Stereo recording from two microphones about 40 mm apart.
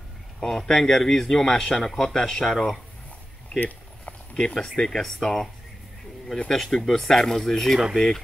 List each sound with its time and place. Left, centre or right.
0.4 s speech: centre
3.5 s a sound: left
4.3 s speech: left
4.6 s speech: centre
6.5 s speech: centre